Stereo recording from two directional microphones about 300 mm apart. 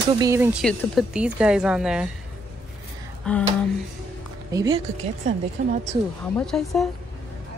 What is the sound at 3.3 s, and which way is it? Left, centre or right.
Speech, centre.